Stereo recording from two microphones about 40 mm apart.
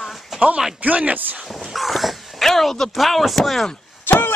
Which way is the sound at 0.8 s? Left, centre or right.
Right.